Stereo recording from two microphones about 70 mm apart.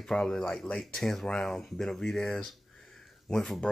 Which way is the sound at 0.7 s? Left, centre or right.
Left.